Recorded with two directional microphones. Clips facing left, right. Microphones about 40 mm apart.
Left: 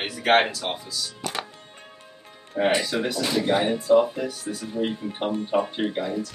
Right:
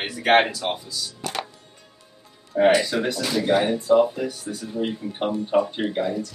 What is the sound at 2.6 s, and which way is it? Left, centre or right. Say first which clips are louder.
Speech: right 4 dB; centre.